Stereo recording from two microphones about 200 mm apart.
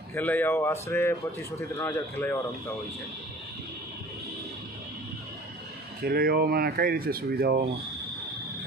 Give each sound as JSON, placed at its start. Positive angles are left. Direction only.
{"t": 0.1, "sound": "speech", "side_deg": 10}
{"t": 6.0, "sound": "speech", "side_deg": -50}